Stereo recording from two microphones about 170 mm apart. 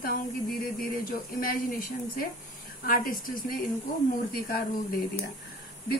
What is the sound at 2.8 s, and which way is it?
Speech, 55° left (ahead or behind).